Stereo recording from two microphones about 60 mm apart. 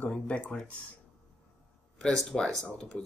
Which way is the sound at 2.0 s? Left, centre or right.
Centre.